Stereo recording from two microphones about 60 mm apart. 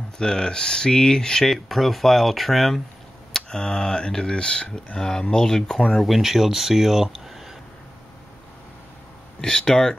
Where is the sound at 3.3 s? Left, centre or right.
Centre.